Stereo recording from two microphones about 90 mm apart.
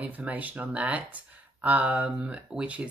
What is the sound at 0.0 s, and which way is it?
Speech, 20° right (ahead or behind).